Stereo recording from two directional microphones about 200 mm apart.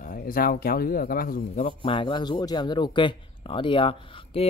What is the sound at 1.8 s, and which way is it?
Speech, 25° left (ahead or behind).